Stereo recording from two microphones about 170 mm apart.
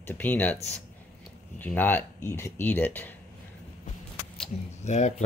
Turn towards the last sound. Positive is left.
turn(degrees=40)  # may be behind; listen again after turning